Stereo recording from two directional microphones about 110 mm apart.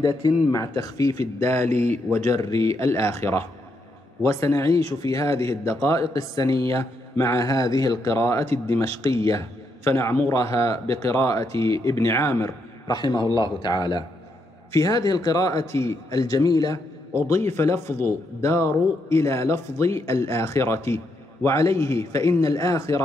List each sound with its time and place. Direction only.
0.0 s a man's voice: 30° left (ahead or behind)
1.7 s speech: 80° right
2.2 s a man's voice: 30° left (ahead or behind)
4.2 s a man's voice: 25° left (ahead or behind)
11.5 s speech: 60° right (ahead or behind)
11.8 s a man's voice: 25° left (ahead or behind)
17.3 s a man's voice: 25° left (ahead or behind)